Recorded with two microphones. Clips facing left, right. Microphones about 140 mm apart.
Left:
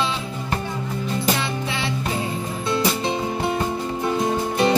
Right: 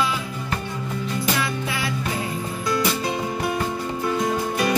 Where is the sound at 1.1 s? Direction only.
25° left (ahead or behind).